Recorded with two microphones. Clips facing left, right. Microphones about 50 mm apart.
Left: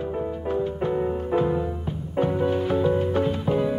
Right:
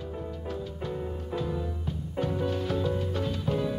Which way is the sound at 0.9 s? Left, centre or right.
Left.